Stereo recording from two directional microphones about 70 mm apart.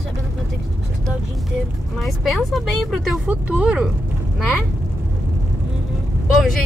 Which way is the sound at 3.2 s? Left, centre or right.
Right.